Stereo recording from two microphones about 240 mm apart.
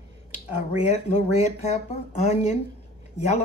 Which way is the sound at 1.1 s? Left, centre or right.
Left.